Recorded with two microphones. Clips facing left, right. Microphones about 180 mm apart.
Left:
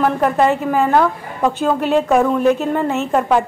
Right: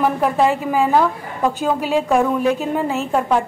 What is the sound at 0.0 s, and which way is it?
A woman's voice, 5° right (ahead or behind).